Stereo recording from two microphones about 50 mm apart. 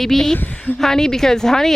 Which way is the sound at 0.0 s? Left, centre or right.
Centre.